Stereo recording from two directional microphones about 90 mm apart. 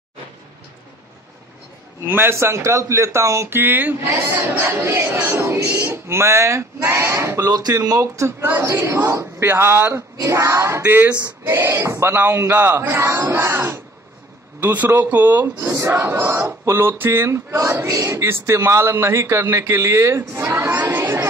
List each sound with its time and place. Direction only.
2.0 s a man's voice: 25° right (ahead or behind)
7.4 s a man's voice: 45° right (ahead or behind); by 8.7 s 25° right (ahead or behind)
8.7 s a man's voice: 40° right (ahead or behind)
9.2 s a man's voice: 25° right (ahead or behind)